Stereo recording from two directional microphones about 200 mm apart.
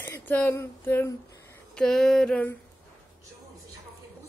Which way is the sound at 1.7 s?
Centre (ahead or behind).